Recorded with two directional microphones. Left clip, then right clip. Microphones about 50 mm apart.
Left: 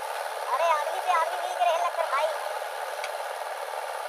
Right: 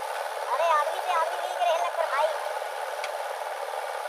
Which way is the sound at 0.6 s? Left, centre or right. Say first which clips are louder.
Right 2 dB; right.